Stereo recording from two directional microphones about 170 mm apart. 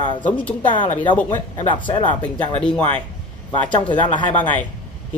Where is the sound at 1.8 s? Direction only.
30° left (ahead or behind).